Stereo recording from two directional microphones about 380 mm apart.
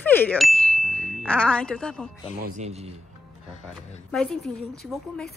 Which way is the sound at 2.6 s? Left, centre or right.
Centre.